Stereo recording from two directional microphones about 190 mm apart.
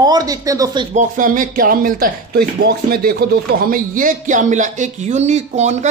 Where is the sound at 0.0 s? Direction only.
20° right (ahead or behind).